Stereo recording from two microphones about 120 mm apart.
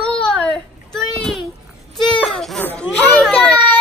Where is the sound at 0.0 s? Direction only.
10° left (ahead or behind).